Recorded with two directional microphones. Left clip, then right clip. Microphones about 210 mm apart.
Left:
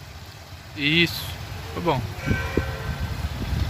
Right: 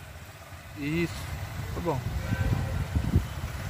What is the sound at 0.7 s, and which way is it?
Speech, 50° left (ahead or behind).